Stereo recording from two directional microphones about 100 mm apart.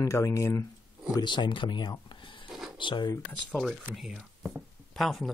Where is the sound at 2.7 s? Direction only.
50° left (ahead or behind).